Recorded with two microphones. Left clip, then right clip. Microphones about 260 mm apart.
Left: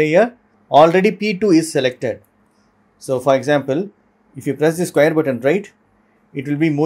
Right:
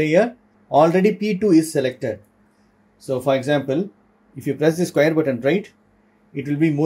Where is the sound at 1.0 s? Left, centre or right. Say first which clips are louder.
Left 2 dB; left.